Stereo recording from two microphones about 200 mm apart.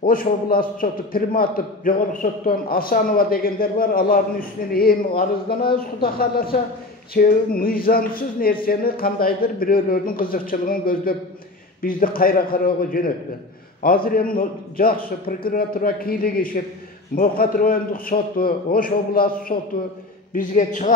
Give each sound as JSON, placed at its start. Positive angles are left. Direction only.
{"t": 0.0, "sound": "a man's voice", "side_deg": 45}
{"t": 5.6, "sound": "speech", "side_deg": 25}
{"t": 6.0, "sound": "a man's voice", "side_deg": 50}